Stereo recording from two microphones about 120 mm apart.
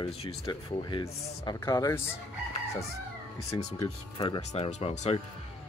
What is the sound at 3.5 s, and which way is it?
Speech, 25° left (ahead or behind).